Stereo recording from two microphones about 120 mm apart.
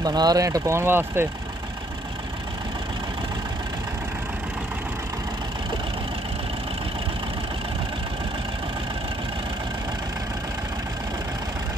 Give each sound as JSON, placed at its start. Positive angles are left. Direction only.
{"t": 0.0, "sound": "speech", "side_deg": -35}